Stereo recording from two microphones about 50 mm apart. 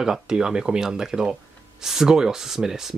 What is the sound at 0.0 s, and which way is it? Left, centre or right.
Speech, centre.